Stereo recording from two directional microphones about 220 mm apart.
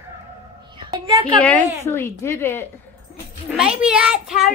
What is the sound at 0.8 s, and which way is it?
Speech, 20° right (ahead or behind).